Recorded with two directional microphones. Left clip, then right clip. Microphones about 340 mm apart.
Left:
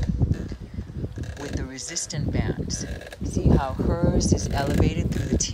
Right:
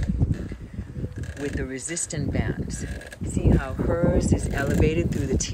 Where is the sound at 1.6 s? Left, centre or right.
Centre.